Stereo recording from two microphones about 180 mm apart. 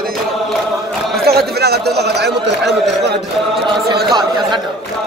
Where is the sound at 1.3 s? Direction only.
60° right (ahead or behind).